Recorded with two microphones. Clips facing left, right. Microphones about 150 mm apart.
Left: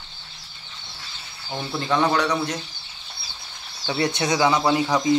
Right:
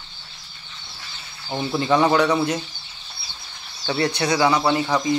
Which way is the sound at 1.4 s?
5° right (ahead or behind).